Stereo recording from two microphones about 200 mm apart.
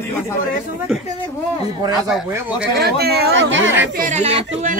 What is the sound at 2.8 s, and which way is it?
Speech, 50° right (ahead or behind).